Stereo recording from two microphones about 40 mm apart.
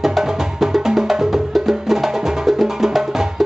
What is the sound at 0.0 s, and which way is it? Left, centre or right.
Music, centre.